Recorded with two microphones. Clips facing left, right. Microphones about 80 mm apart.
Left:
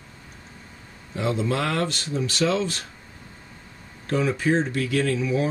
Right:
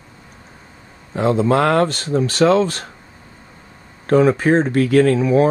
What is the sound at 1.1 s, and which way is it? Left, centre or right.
Speech, right.